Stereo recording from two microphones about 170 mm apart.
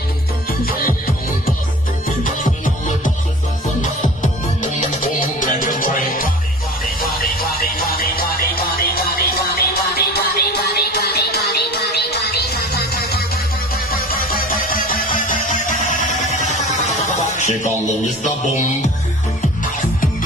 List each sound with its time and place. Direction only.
0.5 s music: 60° left (ahead or behind)
2.3 s music: 50° left (ahead or behind)
17.4 s music: 45° left (ahead or behind)